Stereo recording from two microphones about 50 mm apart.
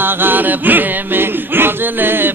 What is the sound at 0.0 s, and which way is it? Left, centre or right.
Music, right.